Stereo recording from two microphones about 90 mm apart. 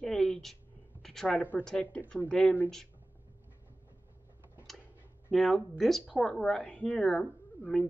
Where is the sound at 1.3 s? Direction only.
20° left (ahead or behind).